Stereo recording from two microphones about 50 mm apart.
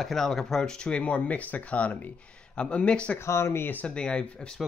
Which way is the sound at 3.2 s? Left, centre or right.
Left.